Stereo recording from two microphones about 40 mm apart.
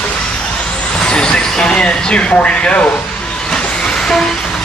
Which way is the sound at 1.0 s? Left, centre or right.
Left.